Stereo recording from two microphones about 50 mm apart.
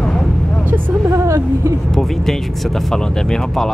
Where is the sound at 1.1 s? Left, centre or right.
Right.